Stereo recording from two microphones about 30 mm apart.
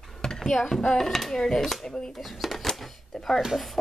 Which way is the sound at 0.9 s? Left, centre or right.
Centre.